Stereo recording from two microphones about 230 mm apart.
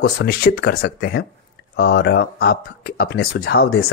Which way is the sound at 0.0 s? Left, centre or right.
Left.